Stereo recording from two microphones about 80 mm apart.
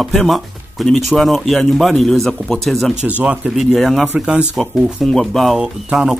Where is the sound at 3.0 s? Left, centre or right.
Centre.